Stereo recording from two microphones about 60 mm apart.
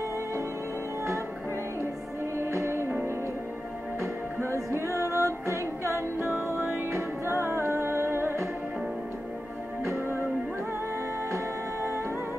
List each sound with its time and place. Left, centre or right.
2.3 s music: right
4.6 s music: right
6.1 s music: right
9.8 s music: right